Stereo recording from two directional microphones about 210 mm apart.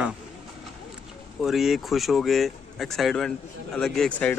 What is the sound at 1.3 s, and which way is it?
Speech, centre (ahead or behind).